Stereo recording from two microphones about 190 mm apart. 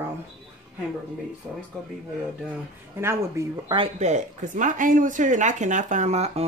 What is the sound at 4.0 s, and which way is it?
Speech, 40° right (ahead or behind).